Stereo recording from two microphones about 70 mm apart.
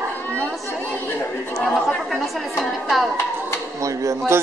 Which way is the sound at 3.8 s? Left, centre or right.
Right.